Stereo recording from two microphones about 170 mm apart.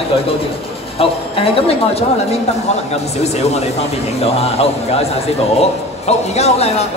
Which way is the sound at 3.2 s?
40° left (ahead or behind).